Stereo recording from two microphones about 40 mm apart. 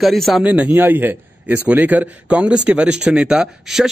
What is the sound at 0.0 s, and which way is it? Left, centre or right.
Speech, centre.